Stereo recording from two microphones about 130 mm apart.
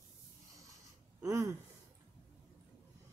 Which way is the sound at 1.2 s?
20° right (ahead or behind).